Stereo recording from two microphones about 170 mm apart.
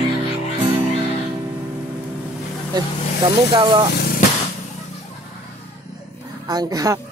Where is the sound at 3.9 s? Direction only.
70° left (ahead or behind).